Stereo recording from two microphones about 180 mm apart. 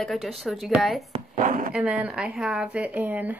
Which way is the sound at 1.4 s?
45° right (ahead or behind).